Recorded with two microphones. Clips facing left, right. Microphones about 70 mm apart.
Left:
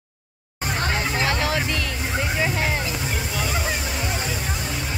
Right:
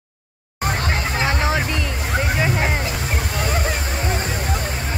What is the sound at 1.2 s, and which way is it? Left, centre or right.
Music, right.